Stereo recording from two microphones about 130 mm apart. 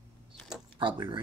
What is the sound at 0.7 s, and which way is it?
Speech, 40° right (ahead or behind).